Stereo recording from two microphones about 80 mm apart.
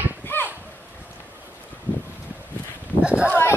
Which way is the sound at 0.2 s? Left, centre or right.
Left.